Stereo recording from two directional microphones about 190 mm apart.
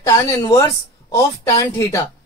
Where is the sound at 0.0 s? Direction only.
15° left (ahead or behind).